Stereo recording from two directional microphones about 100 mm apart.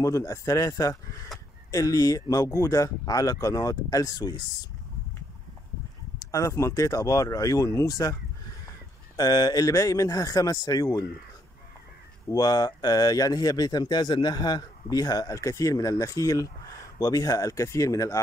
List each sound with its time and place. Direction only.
0.0 s speech: 30° left (ahead or behind)
6.1 s speech: 35° left (ahead or behind)
12.3 s speech: 40° left (ahead or behind)